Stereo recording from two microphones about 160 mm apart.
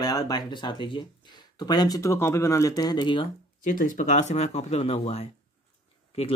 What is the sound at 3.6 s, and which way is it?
Speech, 55° left (ahead or behind).